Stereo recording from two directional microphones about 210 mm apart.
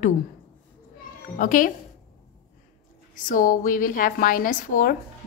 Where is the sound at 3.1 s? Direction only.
40° left (ahead or behind).